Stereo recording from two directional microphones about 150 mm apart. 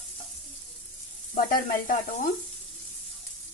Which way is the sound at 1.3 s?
70° left (ahead or behind).